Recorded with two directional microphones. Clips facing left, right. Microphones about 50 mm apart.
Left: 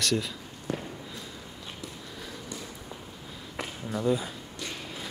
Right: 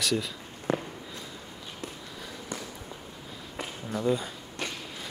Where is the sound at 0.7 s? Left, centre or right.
Right.